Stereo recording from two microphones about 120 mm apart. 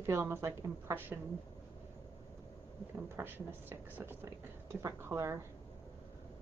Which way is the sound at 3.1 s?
15° right (ahead or behind).